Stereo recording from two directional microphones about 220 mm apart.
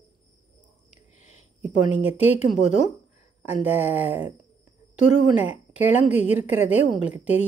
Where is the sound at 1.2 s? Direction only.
30° left (ahead or behind).